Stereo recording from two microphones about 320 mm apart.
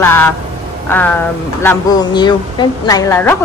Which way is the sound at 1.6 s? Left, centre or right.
Centre.